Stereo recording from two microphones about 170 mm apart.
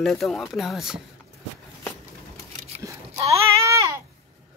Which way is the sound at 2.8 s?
20° right (ahead or behind).